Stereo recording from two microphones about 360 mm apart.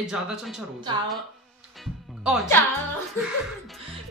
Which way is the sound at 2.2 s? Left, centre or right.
Centre.